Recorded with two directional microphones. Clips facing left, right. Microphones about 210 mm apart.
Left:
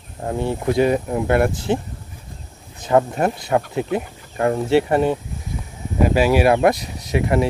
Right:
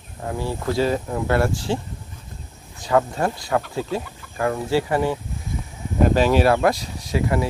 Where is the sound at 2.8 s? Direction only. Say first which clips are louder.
Left 3 dB; 20° left (ahead or behind).